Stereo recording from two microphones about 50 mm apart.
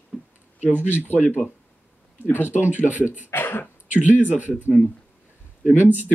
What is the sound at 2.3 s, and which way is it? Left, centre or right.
Speech, left.